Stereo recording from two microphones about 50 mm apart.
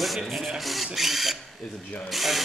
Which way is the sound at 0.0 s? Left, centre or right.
Centre.